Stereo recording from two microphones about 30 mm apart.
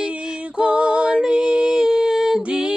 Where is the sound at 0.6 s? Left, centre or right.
Right.